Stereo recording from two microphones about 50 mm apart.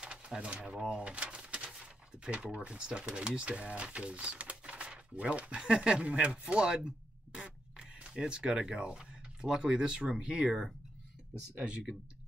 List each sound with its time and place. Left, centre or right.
0.0 s speech: right